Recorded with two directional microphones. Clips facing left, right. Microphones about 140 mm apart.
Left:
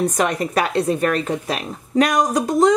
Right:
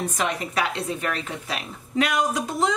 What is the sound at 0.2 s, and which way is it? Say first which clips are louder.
Speech: left 6 dB; 45° left (ahead or behind).